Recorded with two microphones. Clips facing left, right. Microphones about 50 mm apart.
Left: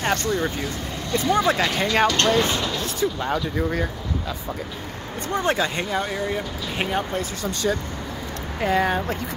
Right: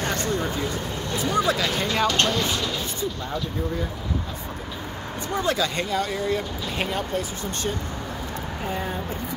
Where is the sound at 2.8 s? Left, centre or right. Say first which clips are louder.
Left 5 dB; left.